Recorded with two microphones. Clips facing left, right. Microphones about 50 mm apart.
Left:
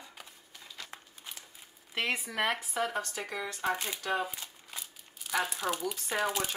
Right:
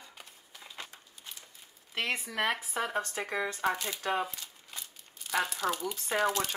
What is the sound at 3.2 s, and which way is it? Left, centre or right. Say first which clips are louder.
Speech: right 4 dB; right.